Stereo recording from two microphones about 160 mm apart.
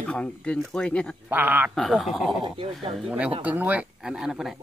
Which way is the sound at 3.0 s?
5° right (ahead or behind).